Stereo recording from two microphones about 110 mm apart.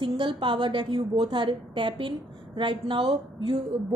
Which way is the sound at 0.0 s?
45° right (ahead or behind).